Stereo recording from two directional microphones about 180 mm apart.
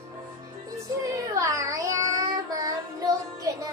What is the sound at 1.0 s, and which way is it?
Child singing, 20° right (ahead or behind).